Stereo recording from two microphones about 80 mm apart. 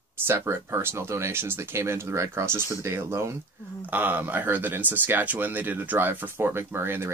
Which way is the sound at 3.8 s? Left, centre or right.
Right.